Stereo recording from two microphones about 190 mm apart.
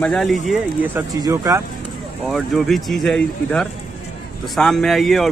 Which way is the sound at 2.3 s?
Centre (ahead or behind).